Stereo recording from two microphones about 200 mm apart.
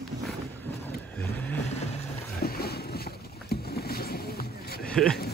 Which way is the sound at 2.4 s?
50° left (ahead or behind).